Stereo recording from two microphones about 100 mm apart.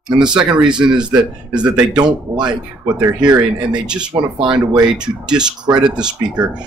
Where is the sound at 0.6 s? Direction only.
10° right (ahead or behind).